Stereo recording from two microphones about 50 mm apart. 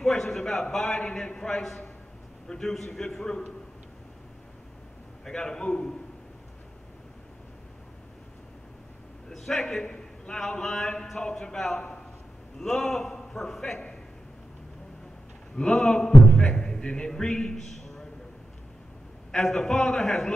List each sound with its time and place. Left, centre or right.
0.0 s a man's voice: centre
5.2 s a man's voice: centre
9.3 s a man's voice: centre
11.5 s a man's voice: centre
15.5 s a man's voice: centre
19.3 s a man's voice: centre